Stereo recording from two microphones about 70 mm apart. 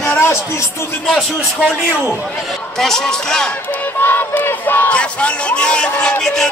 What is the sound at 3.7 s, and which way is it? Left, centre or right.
Speech, left.